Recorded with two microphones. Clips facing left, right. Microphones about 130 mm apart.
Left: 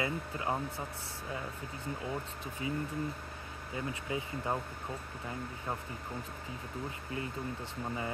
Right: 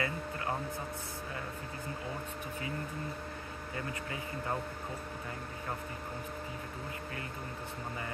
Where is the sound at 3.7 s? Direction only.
15° left (ahead or behind).